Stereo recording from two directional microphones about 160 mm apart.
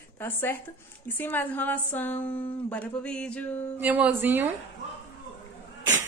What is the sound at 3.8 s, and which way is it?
Speech, 10° right (ahead or behind).